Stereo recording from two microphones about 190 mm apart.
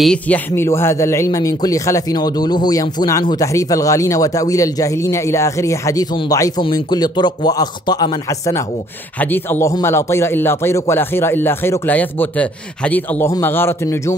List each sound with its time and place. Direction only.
0.0 s a man's voice: 5° left (ahead or behind)